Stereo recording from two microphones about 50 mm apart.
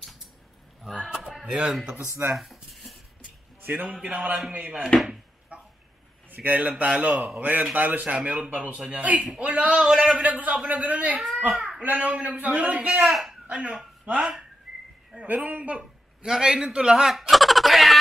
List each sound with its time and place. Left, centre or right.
1.1 s a sound: centre
1.4 s speech: right
2.3 s a sound: centre
3.6 s a man's voice: right
5.5 s chicken: right
6.3 s a man's voice: right
9.8 s a man's voice: centre
10.1 s a man's voice: right
11.5 s a sound: centre
11.8 s a man's voice: right
13.0 s speech: centre
13.5 s speech: right
15.2 s a man's voice: right; by 17.9 s centre